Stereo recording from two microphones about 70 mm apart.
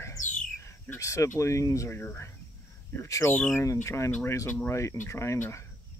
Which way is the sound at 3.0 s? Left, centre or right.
Left.